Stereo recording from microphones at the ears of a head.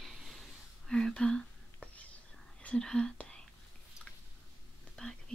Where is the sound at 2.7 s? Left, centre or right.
Centre.